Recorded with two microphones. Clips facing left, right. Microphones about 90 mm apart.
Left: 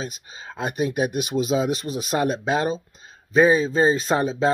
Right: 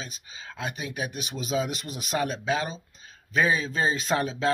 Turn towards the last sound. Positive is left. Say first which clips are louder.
# left 5 dB
turn(degrees=35)  # may be behind; listen again after turning